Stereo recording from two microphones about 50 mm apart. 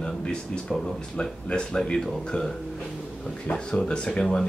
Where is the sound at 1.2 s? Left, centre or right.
Centre.